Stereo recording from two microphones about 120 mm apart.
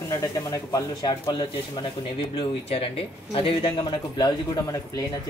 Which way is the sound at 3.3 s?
50° left (ahead or behind).